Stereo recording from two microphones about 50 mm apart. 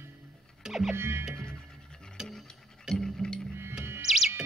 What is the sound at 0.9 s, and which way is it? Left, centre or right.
Music, right.